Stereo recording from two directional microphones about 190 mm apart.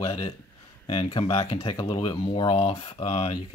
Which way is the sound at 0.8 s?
30° left (ahead or behind).